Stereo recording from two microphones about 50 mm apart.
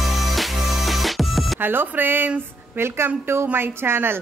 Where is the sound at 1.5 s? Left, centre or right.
Right.